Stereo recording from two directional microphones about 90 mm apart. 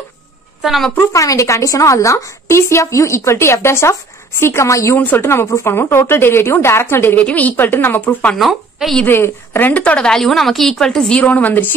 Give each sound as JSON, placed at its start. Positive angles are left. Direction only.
{"t": 0.6, "sound": "a woman's voice", "side_deg": 0}
{"t": 0.9, "sound": "a woman's voice", "side_deg": 35}
{"t": 8.4, "sound": "a woman's voice", "side_deg": 0}
{"t": 9.0, "sound": "a woman's voice", "side_deg": 25}